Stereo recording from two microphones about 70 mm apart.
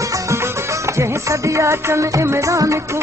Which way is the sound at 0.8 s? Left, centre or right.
Right.